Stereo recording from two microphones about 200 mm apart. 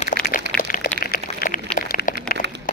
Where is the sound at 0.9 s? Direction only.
45° left (ahead or behind).